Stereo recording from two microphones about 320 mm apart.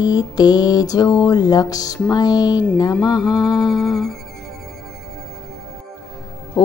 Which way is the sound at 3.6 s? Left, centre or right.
Centre.